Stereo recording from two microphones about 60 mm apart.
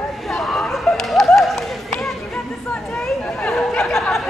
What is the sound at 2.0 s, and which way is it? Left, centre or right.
Chatter, centre.